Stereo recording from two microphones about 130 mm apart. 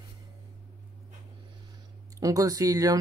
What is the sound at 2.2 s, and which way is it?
Speech, 25° right (ahead or behind).